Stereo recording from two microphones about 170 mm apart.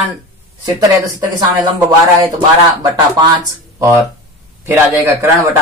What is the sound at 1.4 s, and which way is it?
Speech, 20° right (ahead or behind).